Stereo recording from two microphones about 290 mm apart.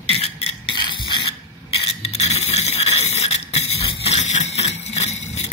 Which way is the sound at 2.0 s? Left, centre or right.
Left.